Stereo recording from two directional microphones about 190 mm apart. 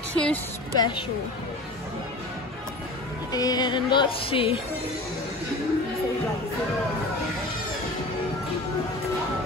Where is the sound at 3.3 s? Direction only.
20° left (ahead or behind).